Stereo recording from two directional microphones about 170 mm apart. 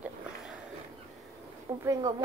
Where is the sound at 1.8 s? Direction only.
25° right (ahead or behind).